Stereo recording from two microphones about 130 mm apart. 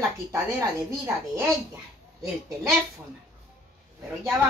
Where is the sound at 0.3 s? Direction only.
25° right (ahead or behind).